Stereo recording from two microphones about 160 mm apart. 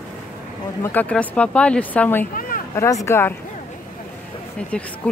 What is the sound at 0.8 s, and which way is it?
Speech, 10° left (ahead or behind).